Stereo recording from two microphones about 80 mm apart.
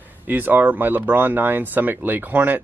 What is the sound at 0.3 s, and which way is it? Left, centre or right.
Speech, right.